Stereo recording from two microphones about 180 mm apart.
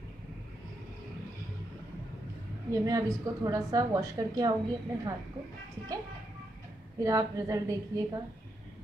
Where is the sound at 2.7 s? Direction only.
20° right (ahead or behind).